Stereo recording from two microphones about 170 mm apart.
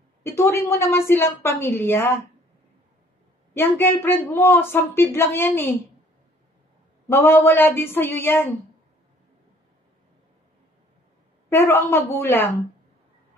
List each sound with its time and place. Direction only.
0.2 s speech: 15° left (ahead or behind)
3.5 s speech: 15° left (ahead or behind)
7.1 s speech: 15° left (ahead or behind)
11.4 s speech: 15° left (ahead or behind)